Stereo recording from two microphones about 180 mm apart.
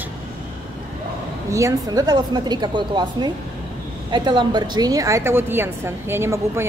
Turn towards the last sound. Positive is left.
turn(degrees=-15)  # may be behind; listen again after turning